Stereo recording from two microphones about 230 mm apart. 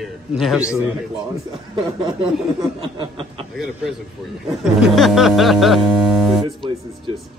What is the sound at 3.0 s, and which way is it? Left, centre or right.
Snicker, right.